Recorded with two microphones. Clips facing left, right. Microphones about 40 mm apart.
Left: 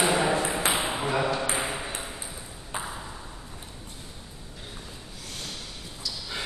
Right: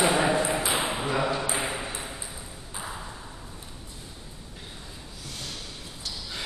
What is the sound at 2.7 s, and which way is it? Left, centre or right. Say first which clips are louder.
Ping: left 4 dB; left.